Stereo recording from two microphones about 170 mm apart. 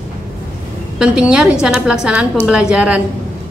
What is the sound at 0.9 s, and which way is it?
A woman's voice, 5° right (ahead or behind).